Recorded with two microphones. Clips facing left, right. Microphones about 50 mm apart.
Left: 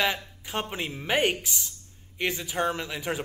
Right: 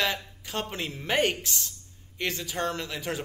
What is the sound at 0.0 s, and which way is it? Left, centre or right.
Speech, centre.